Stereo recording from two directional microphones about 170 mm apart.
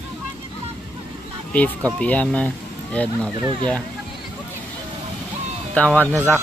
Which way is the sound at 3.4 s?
25° right (ahead or behind).